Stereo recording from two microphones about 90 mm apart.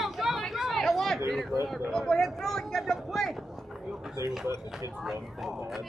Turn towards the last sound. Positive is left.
turn(degrees=0)  # may be behind; listen again after turning